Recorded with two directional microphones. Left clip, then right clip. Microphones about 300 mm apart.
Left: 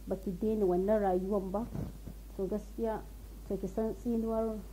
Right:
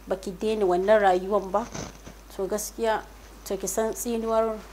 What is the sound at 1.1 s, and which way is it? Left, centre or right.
A woman's voice, right.